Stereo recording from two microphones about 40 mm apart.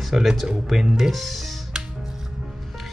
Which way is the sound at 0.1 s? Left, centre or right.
Centre.